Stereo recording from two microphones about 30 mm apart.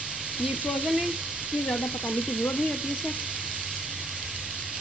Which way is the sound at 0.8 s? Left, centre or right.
Centre.